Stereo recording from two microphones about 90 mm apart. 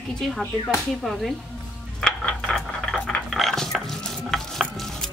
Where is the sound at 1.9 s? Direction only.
10° left (ahead or behind).